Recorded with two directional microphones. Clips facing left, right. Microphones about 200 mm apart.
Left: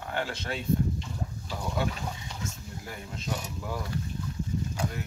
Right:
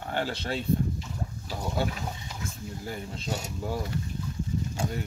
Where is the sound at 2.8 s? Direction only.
30° right (ahead or behind).